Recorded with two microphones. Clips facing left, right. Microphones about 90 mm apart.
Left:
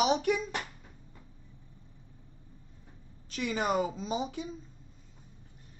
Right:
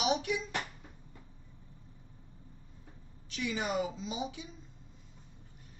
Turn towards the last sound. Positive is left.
turn(degrees=45)  # may be behind; listen again after turning